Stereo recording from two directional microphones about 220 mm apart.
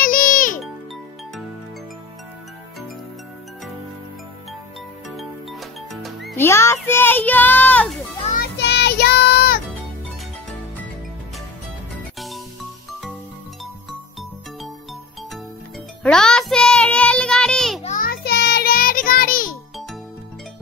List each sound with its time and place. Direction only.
0.0 s music: 40° left (ahead or behind)
6.0 s music: centre (ahead or behind)
6.4 s a child's voice: 10° left (ahead or behind)
8.3 s music: 45° left (ahead or behind)
16.0 s music: 5° left (ahead or behind)
17.8 s music: 40° left (ahead or behind)